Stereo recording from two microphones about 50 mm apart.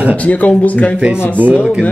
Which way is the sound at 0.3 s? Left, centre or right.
Left.